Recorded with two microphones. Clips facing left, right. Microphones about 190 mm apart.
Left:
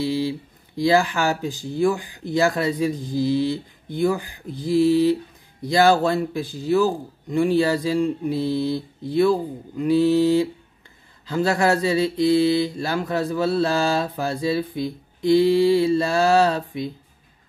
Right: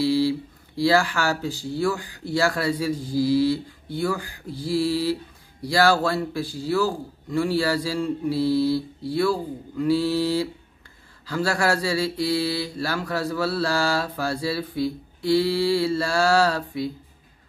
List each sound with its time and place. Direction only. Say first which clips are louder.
0.0 s mantra: right 2 dB; 20° left (ahead or behind)